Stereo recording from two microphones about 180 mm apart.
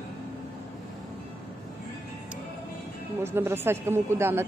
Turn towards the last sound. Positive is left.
turn(degrees=-15)  # may be behind; listen again after turning